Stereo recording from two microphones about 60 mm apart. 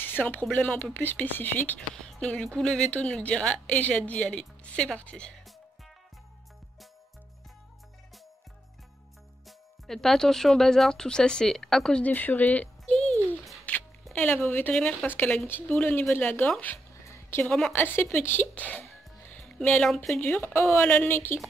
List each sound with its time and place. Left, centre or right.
0.0 s speech: left
2.0 s a woman's voice: centre
9.5 s a woman's voice: centre
12.0 s speech: left
13.7 s music: left
14.3 s speech: left
14.7 s speech: centre
15.0 s speech: left
17.0 s a sound: left
17.5 s a woman's voice: centre
17.7 s speech: left
18.5 s music: left
20.2 s speech: left
21.1 s speech: left